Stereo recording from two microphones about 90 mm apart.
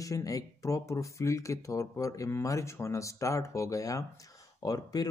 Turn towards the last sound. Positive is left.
turn(degrees=45)  # may be behind; listen again after turning